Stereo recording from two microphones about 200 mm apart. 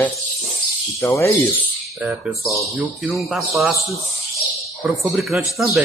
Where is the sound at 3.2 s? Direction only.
Centre (ahead or behind).